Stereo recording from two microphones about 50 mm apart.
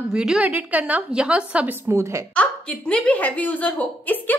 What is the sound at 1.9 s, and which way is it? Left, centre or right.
Speech, right.